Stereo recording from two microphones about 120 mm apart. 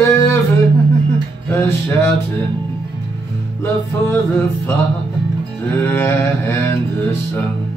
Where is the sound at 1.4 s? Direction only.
20° left (ahead or behind).